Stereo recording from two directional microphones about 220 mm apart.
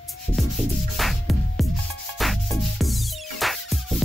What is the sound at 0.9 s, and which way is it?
Music, centre (ahead or behind).